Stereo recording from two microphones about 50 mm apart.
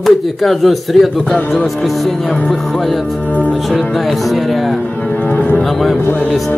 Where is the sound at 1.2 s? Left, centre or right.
Left.